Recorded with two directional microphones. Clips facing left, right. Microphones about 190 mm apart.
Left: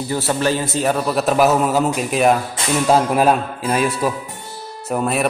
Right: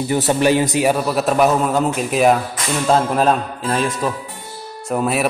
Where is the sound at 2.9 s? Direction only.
10° left (ahead or behind).